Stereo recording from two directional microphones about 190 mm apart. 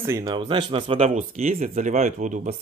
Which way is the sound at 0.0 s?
15° right (ahead or behind).